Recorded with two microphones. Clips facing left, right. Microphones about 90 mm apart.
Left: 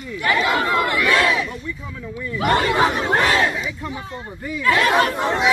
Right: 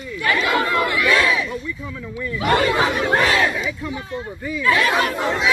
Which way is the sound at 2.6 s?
30° left (ahead or behind).